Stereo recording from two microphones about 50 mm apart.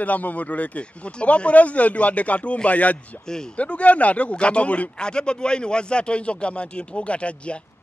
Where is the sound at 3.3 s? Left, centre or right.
Centre.